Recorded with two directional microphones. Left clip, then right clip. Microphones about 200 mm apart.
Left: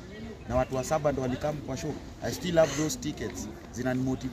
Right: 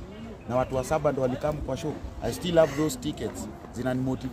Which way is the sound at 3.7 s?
Centre (ahead or behind).